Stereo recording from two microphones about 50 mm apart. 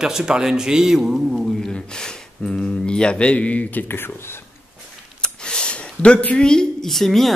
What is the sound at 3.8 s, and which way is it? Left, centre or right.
Speech, left.